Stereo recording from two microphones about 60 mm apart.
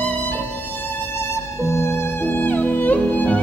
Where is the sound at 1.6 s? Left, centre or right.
Left.